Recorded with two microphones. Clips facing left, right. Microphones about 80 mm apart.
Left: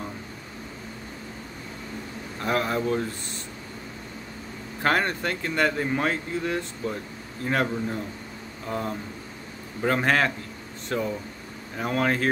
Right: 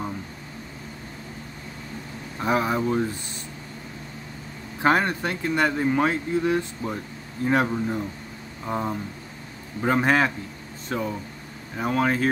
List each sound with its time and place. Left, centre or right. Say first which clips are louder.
2.4 s speech: right 2 dB; centre
4.8 s speech: right 3 dB; centre